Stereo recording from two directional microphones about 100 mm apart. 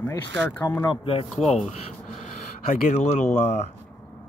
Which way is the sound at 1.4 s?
90° left.